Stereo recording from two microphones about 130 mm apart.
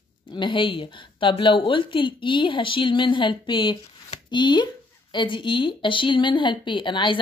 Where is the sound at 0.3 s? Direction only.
40° left (ahead or behind).